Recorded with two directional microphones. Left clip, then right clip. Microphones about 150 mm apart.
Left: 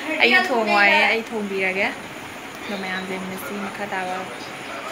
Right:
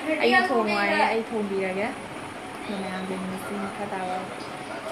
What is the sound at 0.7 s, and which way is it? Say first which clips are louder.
A woman's voice: left 7 dB; 5° left (ahead or behind).